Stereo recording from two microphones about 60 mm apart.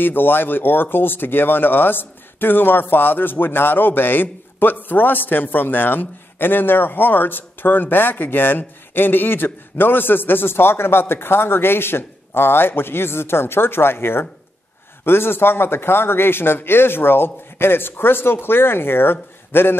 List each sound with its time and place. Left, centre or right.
0.0 s speech: left